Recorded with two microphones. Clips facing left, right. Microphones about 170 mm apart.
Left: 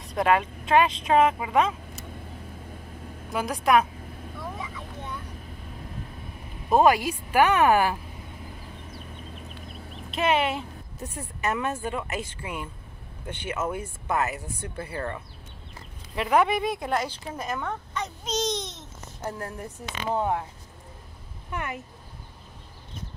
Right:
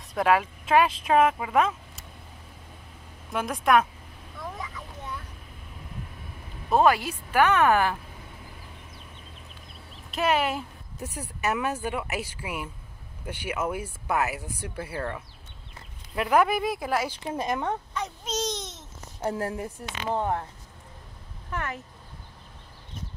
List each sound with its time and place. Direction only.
0.0 s speech: centre (ahead or behind)
3.3 s speech: centre (ahead or behind)
4.4 s vehicle: 5° left (ahead or behind)
6.7 s a woman's voice: 10° left (ahead or behind)
10.1 s speech: centre (ahead or behind)
17.4 s speech: 25° right (ahead or behind)
17.9 s babbling: 5° right (ahead or behind)
19.2 s speech: 25° right (ahead or behind)
20.2 s speech: 5° left (ahead or behind)
21.5 s speech: 5° left (ahead or behind)